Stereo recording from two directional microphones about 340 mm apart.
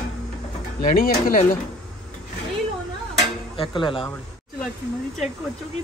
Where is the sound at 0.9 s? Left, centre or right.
Left.